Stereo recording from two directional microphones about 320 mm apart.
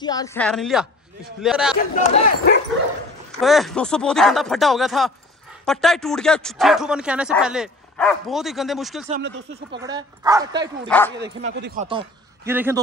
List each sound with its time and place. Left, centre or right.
0.0 s speech: centre
1.8 s speech: left
3.3 s speech: centre
9.1 s speech: right
9.7 s speech: centre
10.9 s speech: centre
11.7 s speech: centre
12.4 s speech: centre